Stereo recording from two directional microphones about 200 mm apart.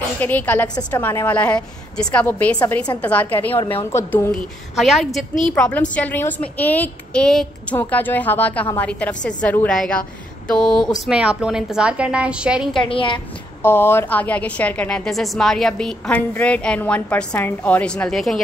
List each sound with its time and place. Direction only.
0.2 s a woman's voice: 10° left (ahead or behind)
4.7 s a woman's voice: centre (ahead or behind)
12.7 s a woman's voice: 25° left (ahead or behind)
13.6 s a woman's voice: 10° left (ahead or behind)